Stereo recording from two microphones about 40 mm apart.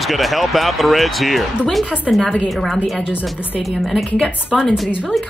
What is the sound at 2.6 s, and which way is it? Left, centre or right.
Speech, centre.